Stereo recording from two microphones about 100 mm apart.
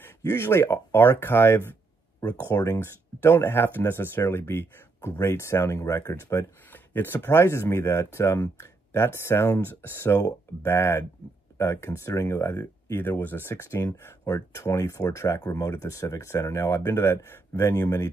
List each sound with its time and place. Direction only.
0.0 s speech: 25° left (ahead or behind)